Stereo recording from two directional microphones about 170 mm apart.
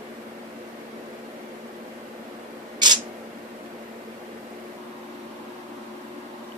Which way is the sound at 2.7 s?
25° right (ahead or behind).